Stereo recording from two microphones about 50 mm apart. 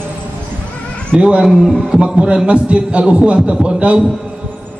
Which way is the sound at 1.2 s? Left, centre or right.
Centre.